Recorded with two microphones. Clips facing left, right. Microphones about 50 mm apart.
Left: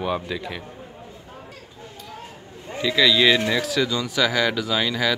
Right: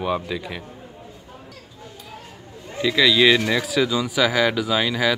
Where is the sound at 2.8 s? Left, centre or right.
Centre.